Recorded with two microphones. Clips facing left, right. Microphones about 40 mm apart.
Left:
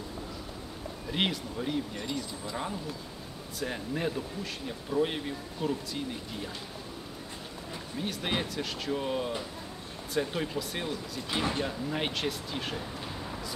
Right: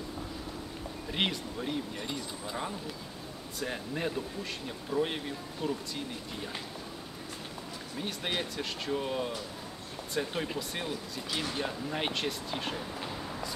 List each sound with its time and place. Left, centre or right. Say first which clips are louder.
1.1 s speech: left 2 dB; centre
3.5 s speech: left 2 dB; centre
8.0 s speech: left 2 dB; centre
11.2 s speech: left 4 dB; left
11.5 s speech: left 2 dB; centre